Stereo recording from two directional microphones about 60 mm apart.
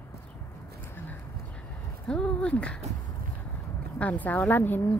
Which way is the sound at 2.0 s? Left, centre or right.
Centre.